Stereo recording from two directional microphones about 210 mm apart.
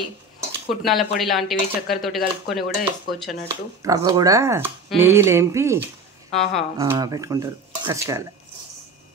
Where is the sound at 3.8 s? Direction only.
15° right (ahead or behind).